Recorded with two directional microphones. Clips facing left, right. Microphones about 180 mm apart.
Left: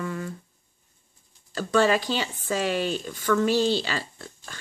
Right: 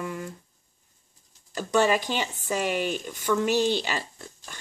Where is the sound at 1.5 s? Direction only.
15° right (ahead or behind).